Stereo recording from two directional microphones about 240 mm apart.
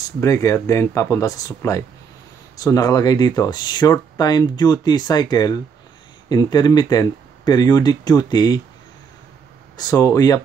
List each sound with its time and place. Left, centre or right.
0.2 s speech: centre
9.8 s speech: centre